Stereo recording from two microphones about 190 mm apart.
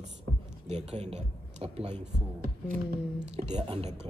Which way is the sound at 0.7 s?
35° right (ahead or behind).